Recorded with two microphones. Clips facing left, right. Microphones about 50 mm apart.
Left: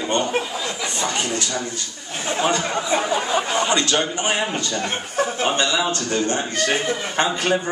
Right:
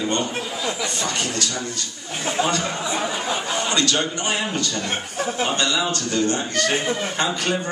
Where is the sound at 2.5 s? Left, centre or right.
Left.